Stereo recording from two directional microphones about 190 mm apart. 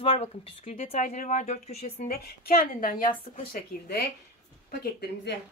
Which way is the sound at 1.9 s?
50° left (ahead or behind).